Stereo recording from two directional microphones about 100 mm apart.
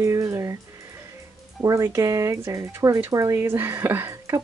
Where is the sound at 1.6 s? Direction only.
30° right (ahead or behind).